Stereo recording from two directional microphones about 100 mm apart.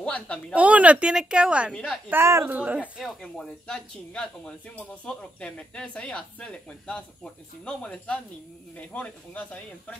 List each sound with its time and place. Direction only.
0.0 s a woman's voice: 10° left (ahead or behind)
0.6 s a woman's voice: 15° right (ahead or behind)
1.7 s speech: 10° left (ahead or behind)
2.0 s a woman's voice: 25° right (ahead or behind)
2.5 s a woman's voice: 15° right (ahead or behind)
3.0 s speech: centre (ahead or behind)